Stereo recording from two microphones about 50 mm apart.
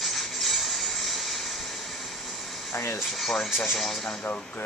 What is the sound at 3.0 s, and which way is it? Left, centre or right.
Speech, centre.